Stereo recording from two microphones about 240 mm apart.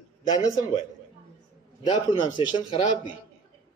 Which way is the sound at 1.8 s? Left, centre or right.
Left.